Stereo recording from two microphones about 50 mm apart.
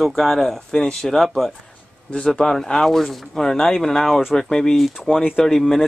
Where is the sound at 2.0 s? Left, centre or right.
Left.